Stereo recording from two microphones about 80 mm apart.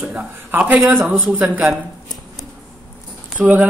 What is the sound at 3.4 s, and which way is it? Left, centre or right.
Speech, centre.